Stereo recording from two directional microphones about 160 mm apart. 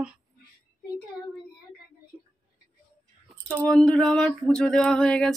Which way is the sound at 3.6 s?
Centre (ahead or behind).